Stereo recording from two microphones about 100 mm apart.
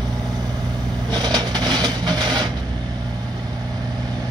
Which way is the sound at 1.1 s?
45° right (ahead or behind).